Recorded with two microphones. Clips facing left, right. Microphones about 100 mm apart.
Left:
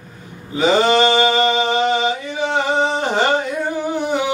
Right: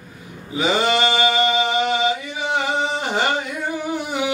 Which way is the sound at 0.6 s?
30° left (ahead or behind).